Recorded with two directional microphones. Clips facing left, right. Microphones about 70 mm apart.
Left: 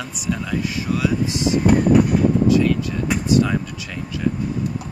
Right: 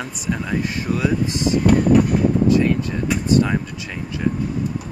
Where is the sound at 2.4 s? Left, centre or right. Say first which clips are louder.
Right 1 dB; right.